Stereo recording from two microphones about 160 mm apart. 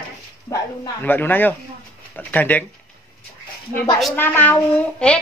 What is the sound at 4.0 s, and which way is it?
A woman's voice, 10° left (ahead or behind).